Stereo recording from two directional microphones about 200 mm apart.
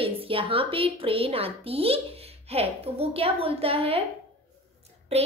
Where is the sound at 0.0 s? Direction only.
25° right (ahead or behind).